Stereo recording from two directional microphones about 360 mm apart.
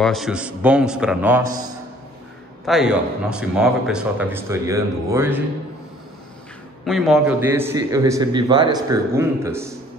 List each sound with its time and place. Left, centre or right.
0.0 s speech: centre
2.6 s speech: centre
6.8 s a man's voice: centre